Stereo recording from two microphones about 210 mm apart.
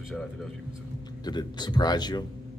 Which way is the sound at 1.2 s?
20° left (ahead or behind).